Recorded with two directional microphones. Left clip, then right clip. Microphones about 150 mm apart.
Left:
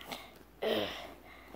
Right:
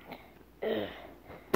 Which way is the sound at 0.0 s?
5° left (ahead or behind).